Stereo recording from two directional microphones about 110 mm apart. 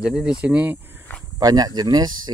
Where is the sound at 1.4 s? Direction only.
35° right (ahead or behind).